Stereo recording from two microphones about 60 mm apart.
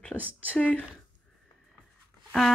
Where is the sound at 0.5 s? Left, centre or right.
Left.